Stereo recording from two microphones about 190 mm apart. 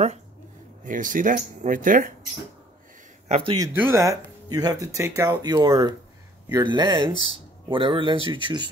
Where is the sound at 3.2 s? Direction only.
30° right (ahead or behind).